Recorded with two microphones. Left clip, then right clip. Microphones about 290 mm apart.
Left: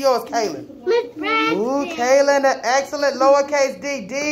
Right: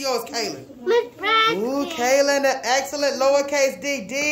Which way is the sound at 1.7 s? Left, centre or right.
Centre.